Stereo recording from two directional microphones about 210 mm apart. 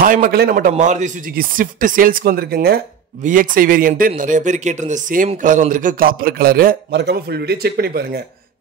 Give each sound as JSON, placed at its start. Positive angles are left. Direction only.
{"t": 0.0, "sound": "a man's voice", "side_deg": -40}